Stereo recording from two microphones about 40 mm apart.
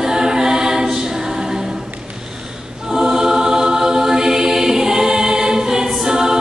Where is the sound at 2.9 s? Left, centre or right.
Centre.